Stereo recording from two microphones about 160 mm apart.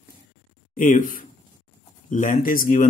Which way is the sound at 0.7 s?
55° left (ahead or behind).